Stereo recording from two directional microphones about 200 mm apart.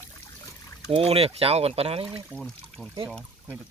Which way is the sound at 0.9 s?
30° right (ahead or behind).